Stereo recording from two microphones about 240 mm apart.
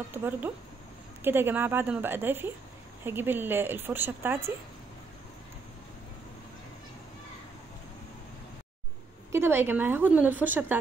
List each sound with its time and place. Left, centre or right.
0.1 s a woman's voice: centre
9.3 s a woman's voice: centre